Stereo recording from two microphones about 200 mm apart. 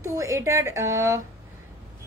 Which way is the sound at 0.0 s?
15° right (ahead or behind).